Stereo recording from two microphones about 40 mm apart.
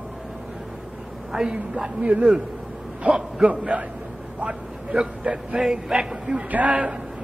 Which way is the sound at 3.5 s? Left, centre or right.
Right.